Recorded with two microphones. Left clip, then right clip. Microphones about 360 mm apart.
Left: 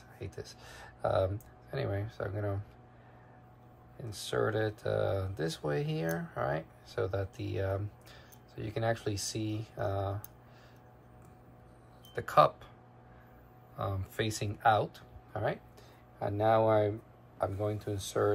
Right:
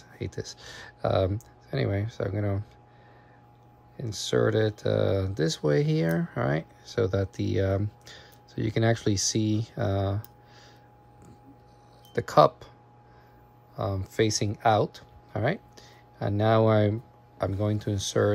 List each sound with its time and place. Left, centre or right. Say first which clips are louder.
0.2 s speech: right 8 dB; centre
4.0 s speech: right 7 dB; centre
12.1 s speech: right 5 dB; centre
13.7 s speech: right 9 dB; centre